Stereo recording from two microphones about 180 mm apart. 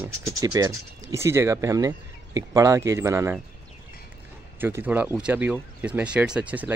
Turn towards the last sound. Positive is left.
turn(degrees=-10)  # may be behind; listen again after turning